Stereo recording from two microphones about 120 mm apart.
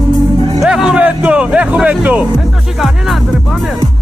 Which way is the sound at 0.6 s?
5° right (ahead or behind).